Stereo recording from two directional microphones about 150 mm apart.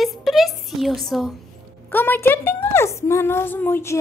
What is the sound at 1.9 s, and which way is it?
A woman's voice, 15° left (ahead or behind).